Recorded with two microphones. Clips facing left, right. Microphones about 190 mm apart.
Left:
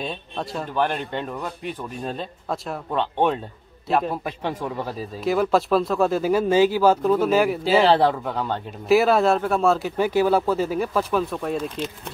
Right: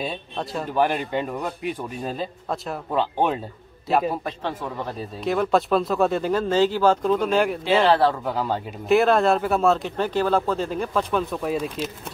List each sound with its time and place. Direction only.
0.0 s speech: 5° right (ahead or behind)
5.2 s speech: centre (ahead or behind)